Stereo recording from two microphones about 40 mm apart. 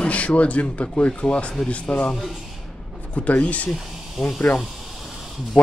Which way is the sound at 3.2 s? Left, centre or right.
Left.